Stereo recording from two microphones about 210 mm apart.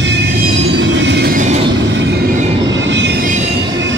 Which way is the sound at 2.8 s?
55° right (ahead or behind).